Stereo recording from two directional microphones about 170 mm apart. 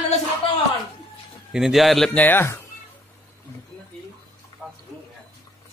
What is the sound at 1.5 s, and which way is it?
A man's voice, centre (ahead or behind).